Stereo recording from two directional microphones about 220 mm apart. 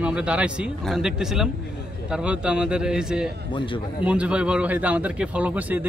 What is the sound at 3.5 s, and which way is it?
Speech, 20° left (ahead or behind).